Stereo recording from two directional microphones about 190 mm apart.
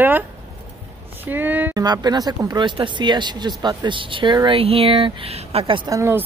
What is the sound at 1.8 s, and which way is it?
Speech, 20° right (ahead or behind).